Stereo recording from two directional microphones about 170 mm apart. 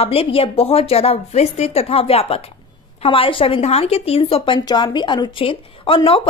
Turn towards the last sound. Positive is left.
turn(degrees=30)  # may be behind; listen again after turning